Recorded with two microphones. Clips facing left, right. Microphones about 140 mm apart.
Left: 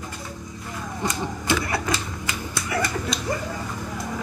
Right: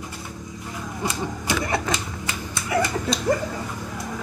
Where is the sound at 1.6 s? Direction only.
25° right (ahead or behind).